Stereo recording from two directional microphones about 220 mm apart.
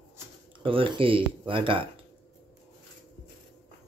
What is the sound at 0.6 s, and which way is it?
Speech, 25° right (ahead or behind).